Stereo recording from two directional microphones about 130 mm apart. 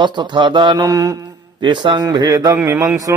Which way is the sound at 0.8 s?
25° right (ahead or behind).